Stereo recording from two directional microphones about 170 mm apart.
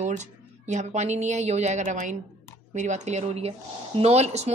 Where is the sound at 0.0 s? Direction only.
45° right (ahead or behind).